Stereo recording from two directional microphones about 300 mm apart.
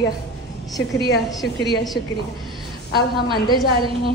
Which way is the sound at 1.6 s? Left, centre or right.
Left.